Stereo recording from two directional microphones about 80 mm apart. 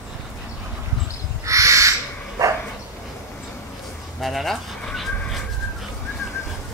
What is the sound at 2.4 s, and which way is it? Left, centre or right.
Dog, right.